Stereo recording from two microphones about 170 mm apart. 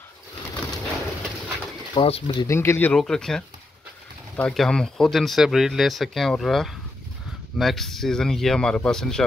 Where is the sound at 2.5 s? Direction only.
15° left (ahead or behind).